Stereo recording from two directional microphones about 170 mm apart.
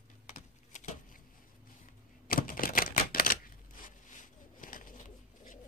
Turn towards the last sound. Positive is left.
turn(degrees=50)  # may be behind; listen again after turning